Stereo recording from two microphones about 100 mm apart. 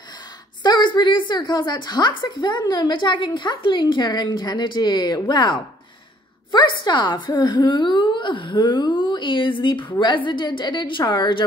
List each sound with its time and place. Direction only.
0.6 s a woman's voice: 50° left (ahead or behind)